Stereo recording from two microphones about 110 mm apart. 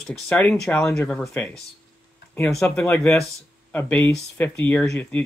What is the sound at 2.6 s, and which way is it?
Speech, 15° left (ahead or behind).